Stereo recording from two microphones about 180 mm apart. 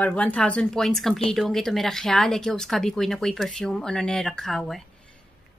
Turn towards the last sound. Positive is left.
turn(degrees=0)  # may be behind; listen again after turning